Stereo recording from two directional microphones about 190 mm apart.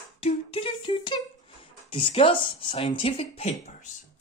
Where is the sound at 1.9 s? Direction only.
30° left (ahead or behind).